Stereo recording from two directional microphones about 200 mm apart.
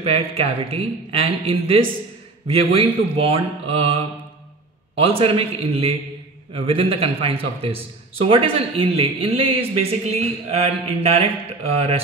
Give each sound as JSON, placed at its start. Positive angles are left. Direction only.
{"t": 0.0, "sound": "a man's voice", "side_deg": -30}
{"t": 5.0, "sound": "a man's voice", "side_deg": -30}